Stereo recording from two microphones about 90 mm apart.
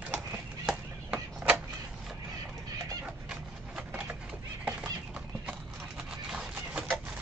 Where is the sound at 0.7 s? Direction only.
10° right (ahead or behind).